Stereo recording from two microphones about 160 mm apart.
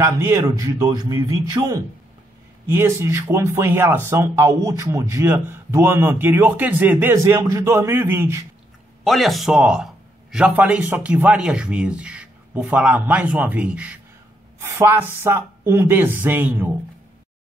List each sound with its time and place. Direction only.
0.0 s a man's voice: 20° right (ahead or behind)
9.0 s speech: centre (ahead or behind)